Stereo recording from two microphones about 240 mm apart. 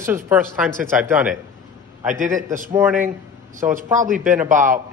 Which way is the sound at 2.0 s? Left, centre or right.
Right.